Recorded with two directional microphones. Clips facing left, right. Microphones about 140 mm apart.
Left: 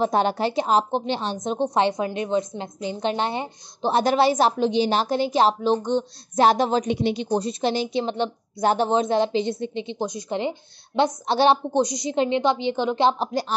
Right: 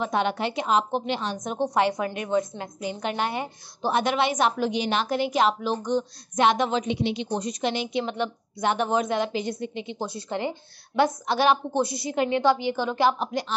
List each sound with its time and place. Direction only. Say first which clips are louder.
0.0 s a woman's voice: left 4 dB; 35° left (ahead or behind)
4.0 s a woman's voice: left 6 dB; 35° left (ahead or behind)
11.7 s a woman's voice: left 3 dB; 20° left (ahead or behind); by 13.6 s 35° left (ahead or behind)